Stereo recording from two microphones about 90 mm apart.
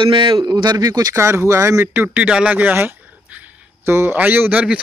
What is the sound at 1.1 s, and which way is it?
Speech, 30° right (ahead or behind).